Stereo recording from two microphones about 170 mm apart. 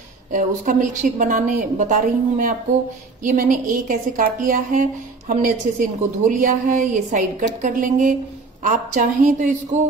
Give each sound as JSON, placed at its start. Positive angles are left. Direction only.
{"t": 0.3, "sound": "a woman's voice", "side_deg": -50}